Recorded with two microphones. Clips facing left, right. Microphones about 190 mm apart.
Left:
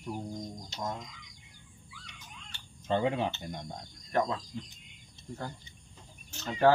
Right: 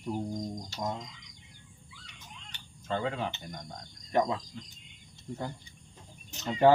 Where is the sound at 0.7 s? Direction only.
20° right (ahead or behind).